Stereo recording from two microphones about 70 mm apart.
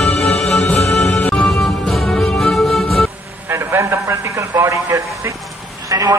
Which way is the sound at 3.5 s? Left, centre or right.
Right.